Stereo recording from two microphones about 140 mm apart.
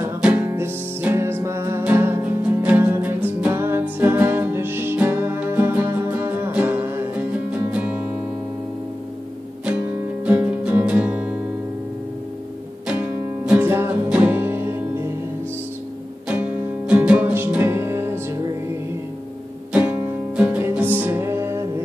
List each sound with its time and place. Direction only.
0.2 s music: 10° right (ahead or behind)
10.2 s music: 10° right (ahead or behind)
13.5 s music: 15° right (ahead or behind)
16.3 s music: 10° right (ahead or behind)
19.7 s music: 10° right (ahead or behind)